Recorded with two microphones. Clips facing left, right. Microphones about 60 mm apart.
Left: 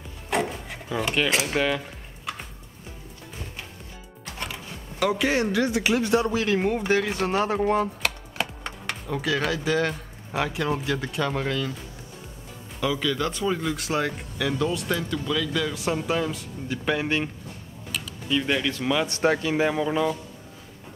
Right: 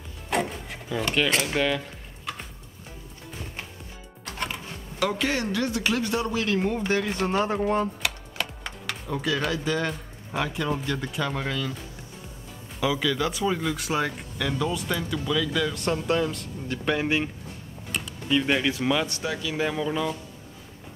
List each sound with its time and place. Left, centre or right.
0.3 s a sound: centre
4.9 s speech: centre
5.4 s speech: left
9.1 s speech: centre
12.8 s speech: centre
18.3 s speech: centre
19.0 s speech: left
19.5 s speech: centre